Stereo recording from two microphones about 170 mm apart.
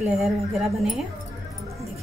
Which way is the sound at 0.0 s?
Centre (ahead or behind).